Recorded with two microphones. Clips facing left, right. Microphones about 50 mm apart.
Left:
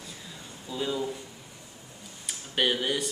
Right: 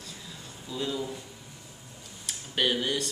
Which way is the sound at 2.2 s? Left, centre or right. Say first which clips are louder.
Left 1 dB; centre.